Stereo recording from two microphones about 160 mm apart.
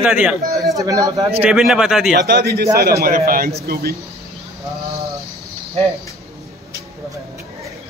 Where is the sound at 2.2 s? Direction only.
90° right.